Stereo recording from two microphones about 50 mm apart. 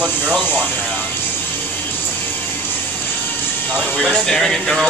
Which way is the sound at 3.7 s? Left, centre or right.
Right.